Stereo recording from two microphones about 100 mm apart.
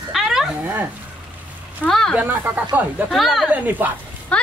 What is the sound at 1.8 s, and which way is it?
Speech, 5° left (ahead or behind).